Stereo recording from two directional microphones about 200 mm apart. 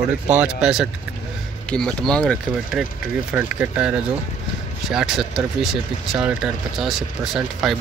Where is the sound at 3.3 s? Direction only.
5° right (ahead or behind).